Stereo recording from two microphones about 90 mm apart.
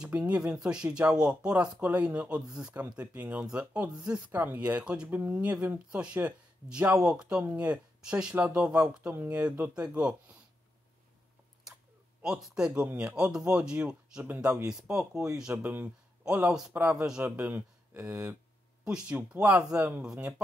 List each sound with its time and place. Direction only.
0.0 s speech: 15° right (ahead or behind)
11.6 s speech: 10° right (ahead or behind)
14.2 s speech: 20° right (ahead or behind)
14.5 s speech: 10° right (ahead or behind)
15.5 s speech: 20° right (ahead or behind)
18.9 s speech: 10° right (ahead or behind)